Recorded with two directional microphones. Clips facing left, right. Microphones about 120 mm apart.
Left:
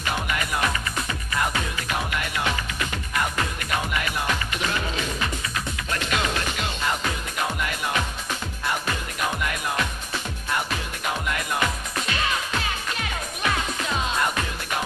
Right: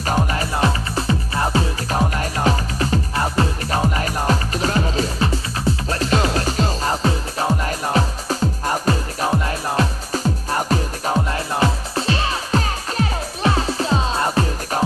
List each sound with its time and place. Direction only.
0.0 s music: 35° right (ahead or behind)